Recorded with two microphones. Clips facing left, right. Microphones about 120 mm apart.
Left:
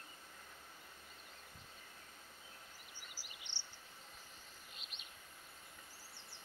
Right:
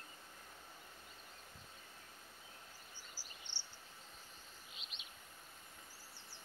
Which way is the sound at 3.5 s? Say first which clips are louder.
Even; 20° left (ahead or behind).